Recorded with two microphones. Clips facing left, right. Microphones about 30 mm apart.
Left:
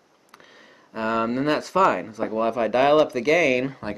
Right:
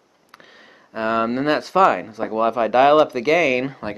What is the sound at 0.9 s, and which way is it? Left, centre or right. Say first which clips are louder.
Speech: right 3 dB; centre.